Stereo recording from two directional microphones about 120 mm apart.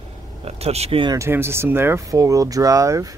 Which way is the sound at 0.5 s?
60° right (ahead or behind).